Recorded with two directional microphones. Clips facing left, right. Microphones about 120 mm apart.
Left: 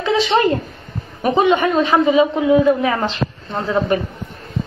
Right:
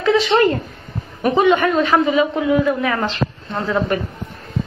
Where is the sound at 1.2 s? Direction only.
20° left (ahead or behind).